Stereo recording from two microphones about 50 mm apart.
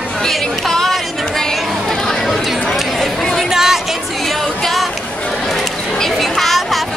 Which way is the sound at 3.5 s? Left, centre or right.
Centre.